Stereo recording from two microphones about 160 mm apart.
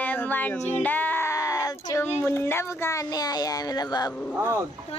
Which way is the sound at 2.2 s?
15° left (ahead or behind).